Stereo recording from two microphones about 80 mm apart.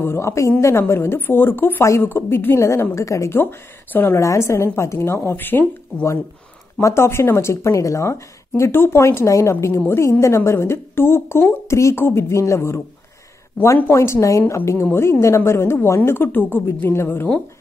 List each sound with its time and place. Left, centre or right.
0.0 s a woman's voice: left
4.2 s a woman's voice: left
6.8 s a woman's voice: left
13.9 s a woman's voice: left